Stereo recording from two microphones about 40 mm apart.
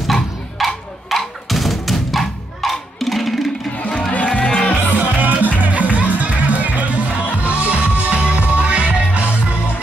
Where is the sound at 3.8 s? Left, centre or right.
Left.